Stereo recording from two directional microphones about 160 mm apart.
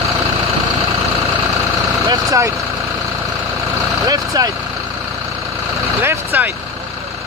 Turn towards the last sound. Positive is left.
turn(degrees=-10)  # may be behind; listen again after turning